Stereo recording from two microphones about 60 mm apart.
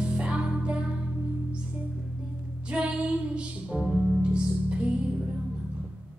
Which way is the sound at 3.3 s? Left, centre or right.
Centre.